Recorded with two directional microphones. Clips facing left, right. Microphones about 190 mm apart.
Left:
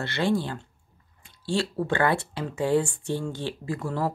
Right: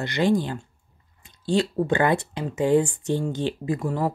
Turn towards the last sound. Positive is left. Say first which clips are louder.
# right 3 dB
turn(degrees=-15)  # may be behind; listen again after turning